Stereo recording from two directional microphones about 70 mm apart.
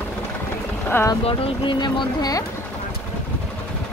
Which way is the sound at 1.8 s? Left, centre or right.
Left.